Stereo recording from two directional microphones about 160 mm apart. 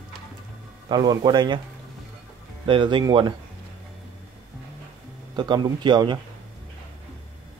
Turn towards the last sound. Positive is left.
turn(degrees=-30)  # may be behind; listen again after turning